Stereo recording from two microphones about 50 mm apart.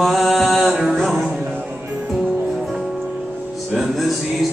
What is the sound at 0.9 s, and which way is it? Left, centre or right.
Music, centre.